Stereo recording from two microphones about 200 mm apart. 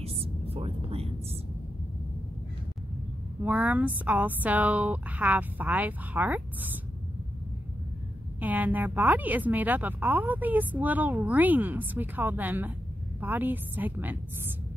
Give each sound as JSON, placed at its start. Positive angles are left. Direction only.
{"t": 0.0, "sound": "a sound", "side_deg": -30}
{"t": 3.4, "sound": "a woman's voice", "side_deg": -5}
{"t": 8.4, "sound": "a woman's voice", "side_deg": -10}